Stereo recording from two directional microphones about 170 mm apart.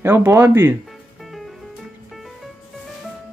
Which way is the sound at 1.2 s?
Centre (ahead or behind).